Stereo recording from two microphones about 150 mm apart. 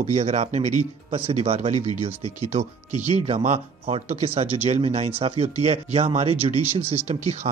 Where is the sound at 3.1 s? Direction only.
45° right (ahead or behind).